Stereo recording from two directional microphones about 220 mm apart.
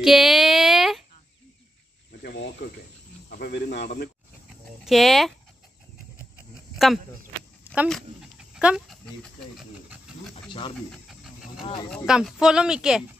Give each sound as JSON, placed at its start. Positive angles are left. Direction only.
{"t": 0.0, "sound": "a sound", "side_deg": 0}
{"t": 2.2, "sound": "cricket", "side_deg": 45}
{"t": 4.8, "sound": "speech", "side_deg": 0}
{"t": 6.7, "sound": "a sound", "side_deg": 0}
{"t": 7.6, "sound": "dog", "side_deg": -5}
{"t": 10.3, "sound": "snake", "side_deg": 20}
{"t": 10.9, "sound": "pant", "side_deg": 0}
{"t": 11.9, "sound": "speech", "side_deg": 0}